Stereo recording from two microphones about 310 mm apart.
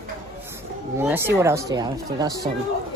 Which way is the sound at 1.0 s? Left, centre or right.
Centre.